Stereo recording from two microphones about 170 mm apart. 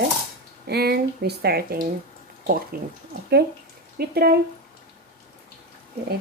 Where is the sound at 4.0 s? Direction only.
65° right (ahead or behind).